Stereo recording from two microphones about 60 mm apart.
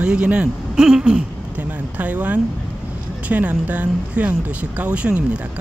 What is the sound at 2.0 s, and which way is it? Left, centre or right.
Speech, right.